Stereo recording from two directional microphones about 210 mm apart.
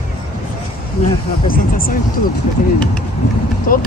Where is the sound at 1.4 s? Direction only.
45° left (ahead or behind).